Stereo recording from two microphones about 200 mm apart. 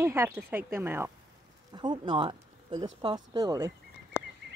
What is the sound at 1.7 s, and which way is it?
Speech, 20° right (ahead or behind).